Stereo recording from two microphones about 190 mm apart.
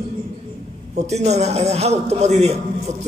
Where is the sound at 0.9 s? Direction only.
35° right (ahead or behind).